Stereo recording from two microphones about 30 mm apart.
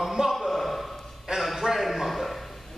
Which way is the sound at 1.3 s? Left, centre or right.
Right.